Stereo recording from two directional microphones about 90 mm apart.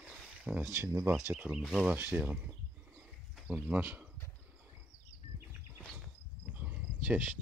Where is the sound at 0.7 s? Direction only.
30° right (ahead or behind).